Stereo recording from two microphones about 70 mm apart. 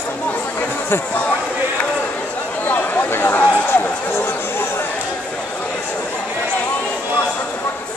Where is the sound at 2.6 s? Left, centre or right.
Left.